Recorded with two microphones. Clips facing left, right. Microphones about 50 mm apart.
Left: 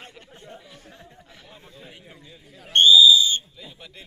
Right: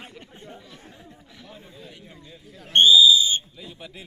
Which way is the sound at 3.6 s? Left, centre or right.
Centre.